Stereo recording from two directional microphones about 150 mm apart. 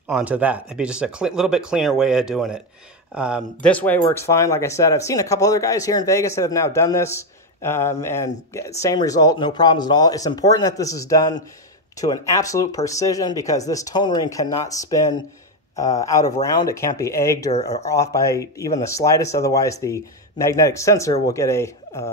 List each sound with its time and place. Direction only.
0.1 s speech: 10° right (ahead or behind)
3.6 s speech: 10° left (ahead or behind)